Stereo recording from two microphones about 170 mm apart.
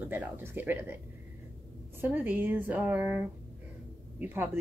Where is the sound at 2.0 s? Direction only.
10° right (ahead or behind).